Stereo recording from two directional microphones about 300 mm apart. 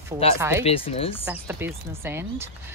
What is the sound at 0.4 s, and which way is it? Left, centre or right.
Speech, centre.